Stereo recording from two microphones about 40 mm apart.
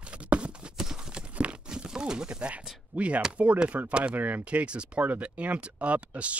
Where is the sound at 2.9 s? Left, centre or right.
Right.